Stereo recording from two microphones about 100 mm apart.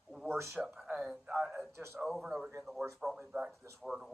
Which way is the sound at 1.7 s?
25° right (ahead or behind).